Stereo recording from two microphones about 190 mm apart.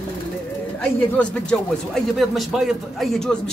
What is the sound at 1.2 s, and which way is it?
A man's voice, 5° left (ahead or behind).